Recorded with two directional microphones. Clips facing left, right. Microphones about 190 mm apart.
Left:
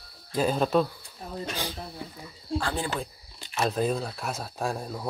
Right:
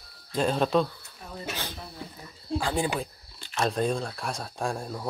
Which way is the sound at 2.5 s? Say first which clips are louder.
Right 2 dB; 15° right (ahead or behind).